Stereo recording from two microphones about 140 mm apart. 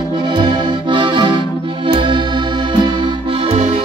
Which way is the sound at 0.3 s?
35° right (ahead or behind).